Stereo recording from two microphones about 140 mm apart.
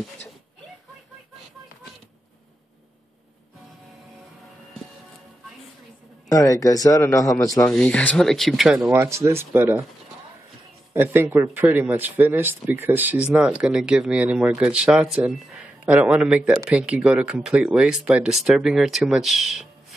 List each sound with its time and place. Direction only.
6.2 s a man's voice: 25° left (ahead or behind)
7.6 s speech: 10° left (ahead or behind)
8.9 s speech: 20° right (ahead or behind)
10.9 s speech: 20° right (ahead or behind); by 19.7 s centre (ahead or behind)